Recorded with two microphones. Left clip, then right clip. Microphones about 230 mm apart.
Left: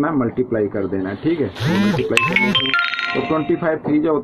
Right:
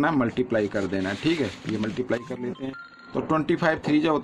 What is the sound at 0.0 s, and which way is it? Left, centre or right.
Speech, right.